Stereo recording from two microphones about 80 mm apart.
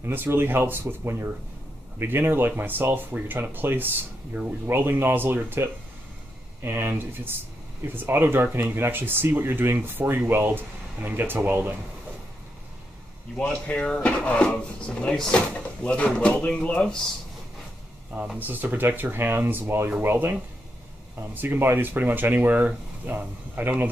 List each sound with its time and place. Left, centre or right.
0.0 s speech: right
4.3 s speech: centre
4.6 s speech: right
13.4 s speech: centre
18.4 s speech: right
21.4 s speech: right